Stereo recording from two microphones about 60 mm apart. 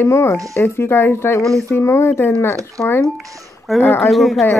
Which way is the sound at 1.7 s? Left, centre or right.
Left.